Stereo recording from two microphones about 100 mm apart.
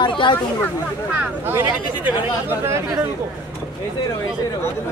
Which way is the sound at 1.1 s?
20° right (ahead or behind).